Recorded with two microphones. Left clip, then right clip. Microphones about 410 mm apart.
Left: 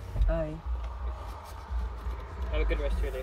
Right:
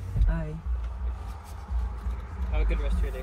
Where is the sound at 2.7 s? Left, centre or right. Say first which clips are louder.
Left 3 dB; left.